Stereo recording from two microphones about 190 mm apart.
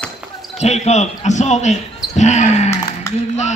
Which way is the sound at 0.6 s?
35° left (ahead or behind).